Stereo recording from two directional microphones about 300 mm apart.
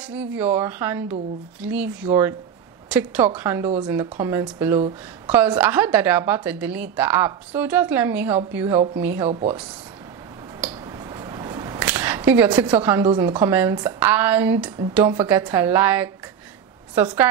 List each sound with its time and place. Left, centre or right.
0.0 s a woman's voice: centre
9.3 s speech: right
10.6 s a woman's voice: centre